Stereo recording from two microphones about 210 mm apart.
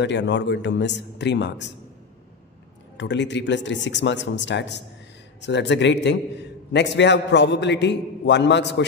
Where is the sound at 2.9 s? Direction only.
55° left (ahead or behind).